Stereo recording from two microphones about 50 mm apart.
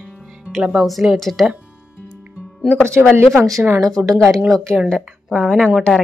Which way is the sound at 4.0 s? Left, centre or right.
Right.